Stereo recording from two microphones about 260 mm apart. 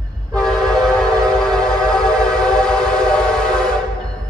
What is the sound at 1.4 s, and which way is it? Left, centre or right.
Music, centre.